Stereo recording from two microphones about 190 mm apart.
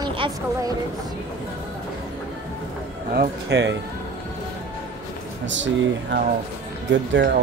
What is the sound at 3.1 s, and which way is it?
Speech, 65° right (ahead or behind).